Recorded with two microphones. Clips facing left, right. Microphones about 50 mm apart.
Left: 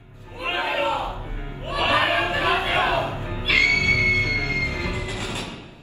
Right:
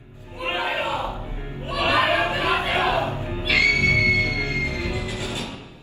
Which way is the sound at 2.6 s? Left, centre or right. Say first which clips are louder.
Even; left.